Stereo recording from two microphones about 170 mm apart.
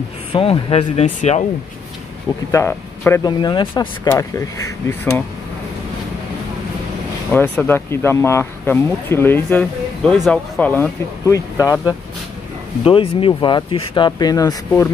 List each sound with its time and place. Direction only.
0.3 s speech: 35° left (ahead or behind)
2.5 s speech: 10° left (ahead or behind)
3.3 s speech: 25° left (ahead or behind)
4.1 s speech: 20° left (ahead or behind)
7.3 s speech: 10° left (ahead or behind)
10.6 s speech: 10° left (ahead or behind)
12.8 s speech: 30° left (ahead or behind)